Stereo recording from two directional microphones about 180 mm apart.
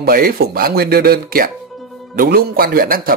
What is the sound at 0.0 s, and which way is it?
Speech, 55° right (ahead or behind).